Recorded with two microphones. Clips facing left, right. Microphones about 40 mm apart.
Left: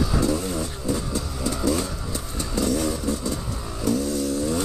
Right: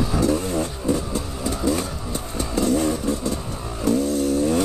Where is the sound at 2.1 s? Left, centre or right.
Right.